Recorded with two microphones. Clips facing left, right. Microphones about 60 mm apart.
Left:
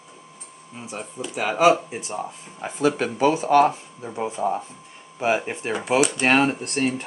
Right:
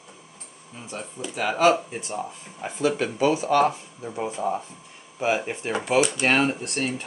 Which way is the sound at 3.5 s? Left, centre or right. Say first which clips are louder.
Left 3 dB; left.